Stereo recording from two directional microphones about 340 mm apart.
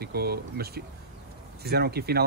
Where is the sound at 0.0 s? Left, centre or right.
Right.